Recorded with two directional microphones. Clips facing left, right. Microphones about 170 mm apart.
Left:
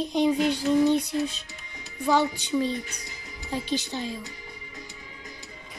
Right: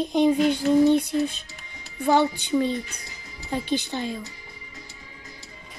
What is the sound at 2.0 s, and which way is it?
Speech, 55° right (ahead or behind).